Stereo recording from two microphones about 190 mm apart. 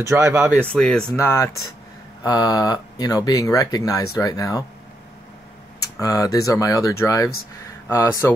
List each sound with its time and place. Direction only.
0.0 s speech: 15° right (ahead or behind)
0.6 s speech: 5° left (ahead or behind)
5.9 s speech: 20° left (ahead or behind)